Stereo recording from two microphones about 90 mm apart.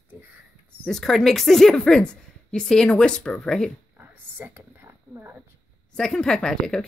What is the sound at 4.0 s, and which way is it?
Whispering, 20° right (ahead or behind).